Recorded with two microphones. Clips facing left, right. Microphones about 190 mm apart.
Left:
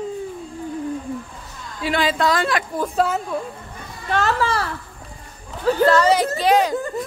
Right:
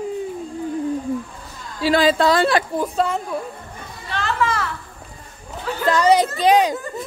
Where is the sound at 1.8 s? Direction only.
35° right (ahead or behind).